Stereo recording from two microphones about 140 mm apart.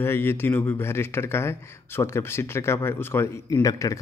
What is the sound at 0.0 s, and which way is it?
Speech, 15° left (ahead or behind).